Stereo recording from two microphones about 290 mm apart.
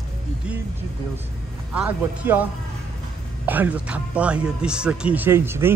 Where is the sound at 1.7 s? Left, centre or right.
Centre.